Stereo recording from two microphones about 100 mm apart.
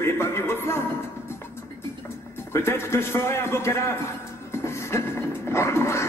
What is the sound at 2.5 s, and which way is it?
A man's voice, 25° left (ahead or behind).